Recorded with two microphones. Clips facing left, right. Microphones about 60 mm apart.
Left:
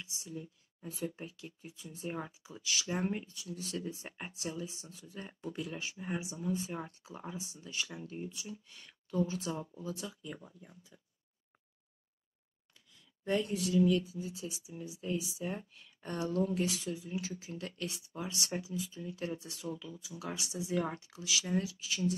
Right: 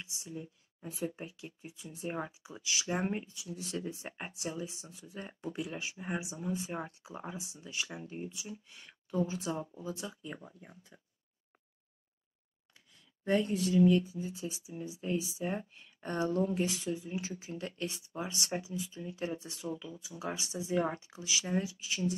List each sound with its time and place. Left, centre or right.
0.0 s speech: centre
10.2 s speech: right
13.2 s speech: right
13.5 s speech: right
13.7 s speech: right
16.7 s speech: right